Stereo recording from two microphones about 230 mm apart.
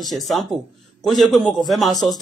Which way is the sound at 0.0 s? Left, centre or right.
Centre.